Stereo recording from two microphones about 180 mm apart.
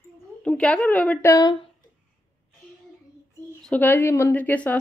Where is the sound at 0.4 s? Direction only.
5° left (ahead or behind).